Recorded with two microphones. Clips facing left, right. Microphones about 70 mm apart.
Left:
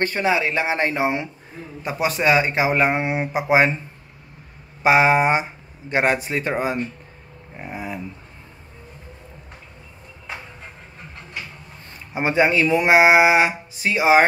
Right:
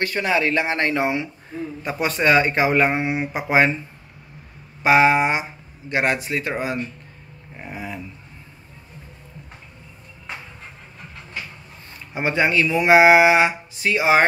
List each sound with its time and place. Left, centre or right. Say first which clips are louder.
0.0 s speech: left 1 dB; left
3.0 s speech: even; left
3.3 s speech: left 1 dB; centre
4.8 s speech: even; left
7.7 s speech: left 2 dB; centre
12.1 s speech: left 2 dB; left